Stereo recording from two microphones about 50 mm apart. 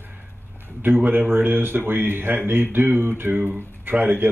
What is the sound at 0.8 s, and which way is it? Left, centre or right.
A man's voice, right.